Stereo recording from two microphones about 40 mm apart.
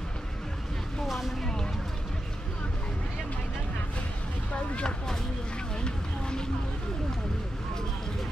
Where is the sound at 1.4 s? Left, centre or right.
Centre.